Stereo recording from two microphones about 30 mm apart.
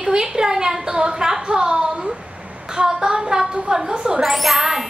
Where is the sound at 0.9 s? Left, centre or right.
Right.